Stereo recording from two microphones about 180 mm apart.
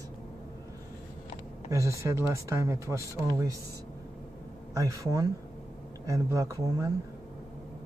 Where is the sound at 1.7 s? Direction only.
15° right (ahead or behind).